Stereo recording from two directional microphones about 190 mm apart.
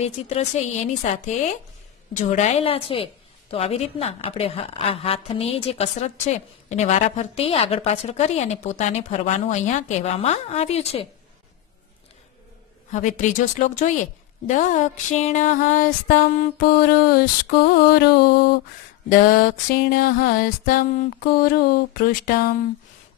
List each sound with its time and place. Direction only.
0.0 s a woman's voice: 35° left (ahead or behind)
12.9 s a woman's voice: 40° left (ahead or behind)
16.5 s music: 55° left (ahead or behind)